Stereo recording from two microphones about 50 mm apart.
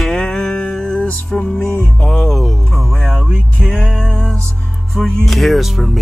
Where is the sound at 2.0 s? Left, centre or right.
Centre.